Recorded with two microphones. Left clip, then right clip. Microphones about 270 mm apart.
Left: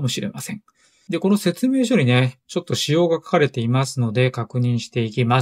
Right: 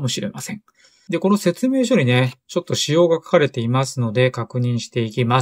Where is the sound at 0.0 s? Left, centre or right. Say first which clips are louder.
Right 1 dB; centre.